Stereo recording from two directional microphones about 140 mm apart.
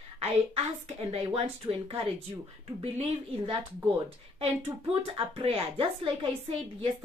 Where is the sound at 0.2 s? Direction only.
50° right (ahead or behind).